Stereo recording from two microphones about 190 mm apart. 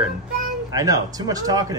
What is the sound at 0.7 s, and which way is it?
Speech, 20° right (ahead or behind).